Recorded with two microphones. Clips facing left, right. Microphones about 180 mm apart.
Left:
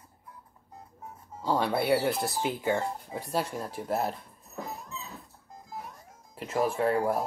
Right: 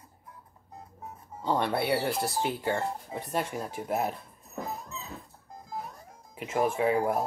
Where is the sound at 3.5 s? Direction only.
5° right (ahead or behind).